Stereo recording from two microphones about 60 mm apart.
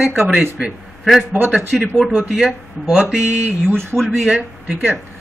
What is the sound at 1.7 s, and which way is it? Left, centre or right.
Speech, centre.